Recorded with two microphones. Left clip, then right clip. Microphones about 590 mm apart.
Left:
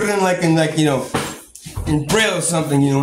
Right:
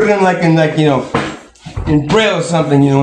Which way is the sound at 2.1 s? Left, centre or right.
Left.